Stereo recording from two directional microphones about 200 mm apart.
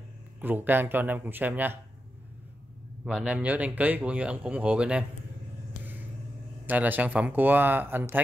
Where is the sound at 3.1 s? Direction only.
5° right (ahead or behind).